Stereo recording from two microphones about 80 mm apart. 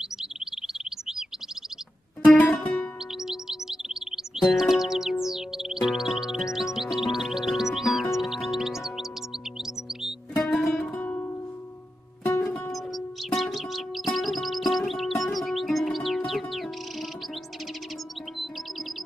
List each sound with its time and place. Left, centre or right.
0.2 s chirp: centre
2.2 s music: centre
3.3 s music: centre
10.3 s music: centre
10.8 s music: centre
12.7 s music: centre